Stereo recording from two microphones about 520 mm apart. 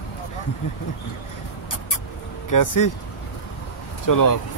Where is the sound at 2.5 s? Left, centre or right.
Left.